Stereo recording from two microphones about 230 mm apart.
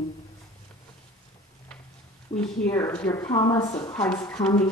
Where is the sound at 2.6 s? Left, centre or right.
Centre.